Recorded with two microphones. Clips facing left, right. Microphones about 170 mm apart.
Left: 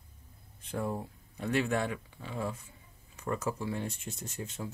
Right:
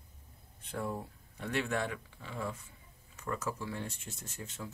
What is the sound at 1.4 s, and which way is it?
Speech, 15° left (ahead or behind).